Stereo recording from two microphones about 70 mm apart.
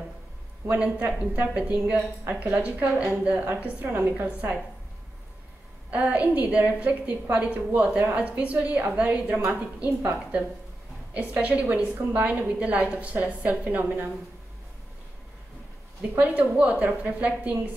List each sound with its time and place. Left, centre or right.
0.7 s a woman's voice: right
5.9 s a woman's voice: right
11.1 s a woman's voice: centre
16.0 s a woman's voice: centre